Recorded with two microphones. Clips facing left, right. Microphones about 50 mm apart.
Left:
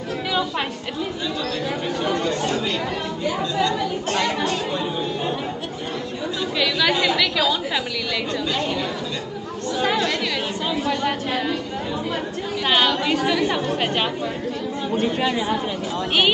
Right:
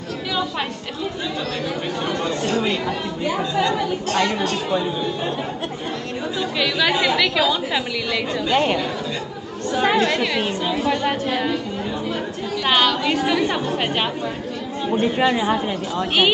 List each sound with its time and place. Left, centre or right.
3.5 s speech: right
4.1 s speech: centre
6.6 s a woman's voice: centre
8.5 s speech: right
9.8 s a woman's voice: centre
12.6 s a woman's voice: centre
14.9 s speech: centre